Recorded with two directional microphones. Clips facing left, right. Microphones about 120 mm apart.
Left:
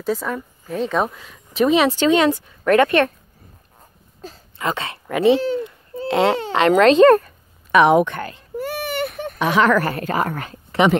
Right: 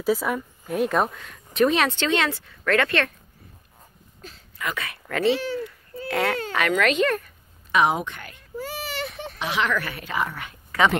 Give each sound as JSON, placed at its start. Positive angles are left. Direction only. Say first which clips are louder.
{"t": 0.0, "sound": "a woman's voice", "louder": "even", "side_deg": -10}
{"t": 2.0, "sound": "speech", "louder": "left 8 dB", "side_deg": 10}
{"t": 4.6, "sound": "speech", "louder": "left 6 dB", "side_deg": 25}
{"t": 5.0, "sound": "a sound", "louder": "left 7 dB", "side_deg": 15}
{"t": 6.7, "sound": "speech", "louder": "left 12 dB", "side_deg": 35}
{"t": 7.7, "sound": "speech", "louder": "left 8 dB", "side_deg": 65}
{"t": 8.2, "sound": "speech", "louder": "left 12 dB", "side_deg": 30}
{"t": 8.5, "sound": "a sound", "louder": "left 7 dB", "side_deg": 60}